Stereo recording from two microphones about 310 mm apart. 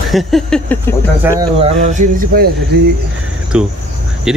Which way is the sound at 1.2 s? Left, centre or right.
Centre.